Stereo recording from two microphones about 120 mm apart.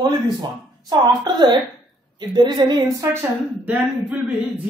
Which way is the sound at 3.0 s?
20° right (ahead or behind).